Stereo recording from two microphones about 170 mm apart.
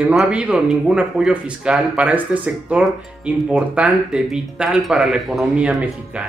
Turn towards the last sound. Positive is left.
turn(degrees=-5)  # may be behind; listen again after turning